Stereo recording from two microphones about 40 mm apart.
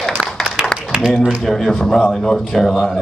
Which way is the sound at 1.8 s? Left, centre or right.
Centre.